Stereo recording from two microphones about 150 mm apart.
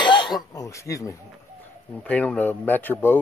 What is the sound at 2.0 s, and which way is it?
Speech, 10° left (ahead or behind).